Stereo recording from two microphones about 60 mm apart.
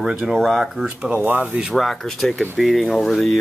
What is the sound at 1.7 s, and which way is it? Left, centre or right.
Speech, centre.